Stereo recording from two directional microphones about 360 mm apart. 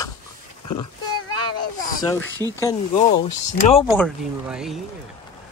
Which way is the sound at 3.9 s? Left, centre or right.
Centre.